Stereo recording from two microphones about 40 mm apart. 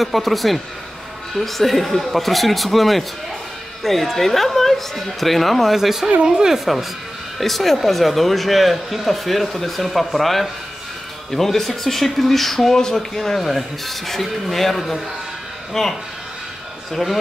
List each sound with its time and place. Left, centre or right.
0.0 s speech: centre
6.6 s speech: centre